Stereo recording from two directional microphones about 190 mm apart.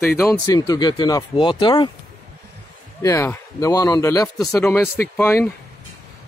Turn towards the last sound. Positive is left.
turn(degrees=15)  # may be behind; listen again after turning